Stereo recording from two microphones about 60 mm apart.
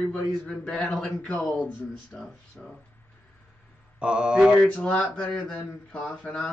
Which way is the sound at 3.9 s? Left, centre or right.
Centre.